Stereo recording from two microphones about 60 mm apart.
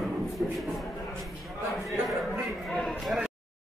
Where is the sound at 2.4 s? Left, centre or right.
Centre.